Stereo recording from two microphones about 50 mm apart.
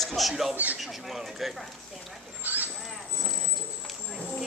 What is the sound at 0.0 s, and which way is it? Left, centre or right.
Speech, centre.